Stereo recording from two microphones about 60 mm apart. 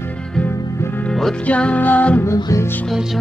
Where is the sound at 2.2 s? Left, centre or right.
Left.